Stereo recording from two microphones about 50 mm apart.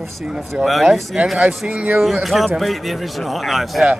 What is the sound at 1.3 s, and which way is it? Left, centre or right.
Speech, centre.